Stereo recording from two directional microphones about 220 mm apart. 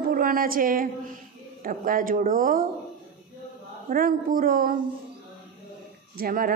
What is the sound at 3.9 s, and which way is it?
Speech, 40° right (ahead or behind).